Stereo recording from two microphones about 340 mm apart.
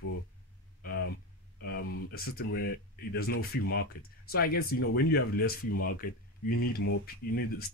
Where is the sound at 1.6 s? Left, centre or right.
Left.